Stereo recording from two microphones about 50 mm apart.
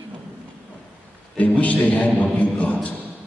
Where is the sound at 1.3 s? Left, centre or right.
Left.